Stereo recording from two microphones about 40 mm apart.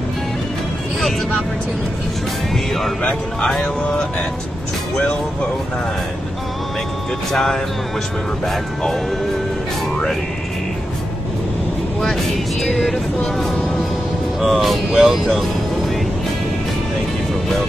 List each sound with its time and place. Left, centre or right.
2.5 s speech: centre
3.0 s speech: left
7.3 s speech: centre
12.7 s speech: centre